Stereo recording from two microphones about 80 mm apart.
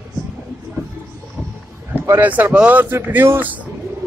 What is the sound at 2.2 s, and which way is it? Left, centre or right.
Speech, centre.